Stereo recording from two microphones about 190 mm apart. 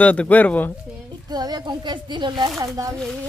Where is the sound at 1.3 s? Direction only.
20° right (ahead or behind).